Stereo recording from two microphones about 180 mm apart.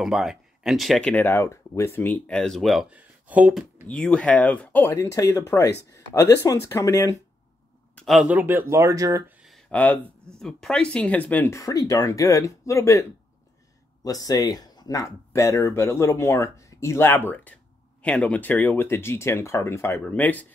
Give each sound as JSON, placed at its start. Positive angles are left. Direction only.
{"t": 0.0, "sound": "speech", "side_deg": 0}
{"t": 3.8, "sound": "speech", "side_deg": 5}
{"t": 7.9, "sound": "speech", "side_deg": 0}
{"t": 9.4, "sound": "speech", "side_deg": 0}
{"t": 14.0, "sound": "speech", "side_deg": 20}